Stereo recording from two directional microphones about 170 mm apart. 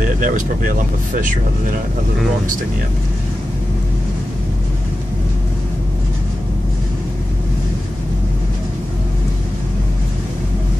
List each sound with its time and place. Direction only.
0.0 s speech: 50° right (ahead or behind)